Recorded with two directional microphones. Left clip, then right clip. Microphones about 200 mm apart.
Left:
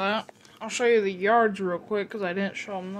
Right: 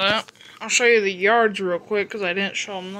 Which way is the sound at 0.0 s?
5° left (ahead or behind).